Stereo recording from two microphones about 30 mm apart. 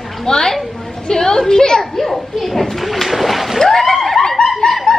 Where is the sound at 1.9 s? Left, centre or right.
Centre.